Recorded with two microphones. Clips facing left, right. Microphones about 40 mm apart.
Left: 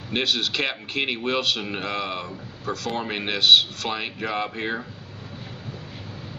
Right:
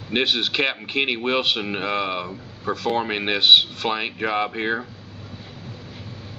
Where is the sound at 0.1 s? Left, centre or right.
Centre.